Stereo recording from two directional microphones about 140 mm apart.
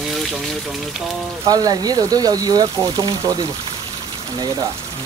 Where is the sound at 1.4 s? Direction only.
30° right (ahead or behind).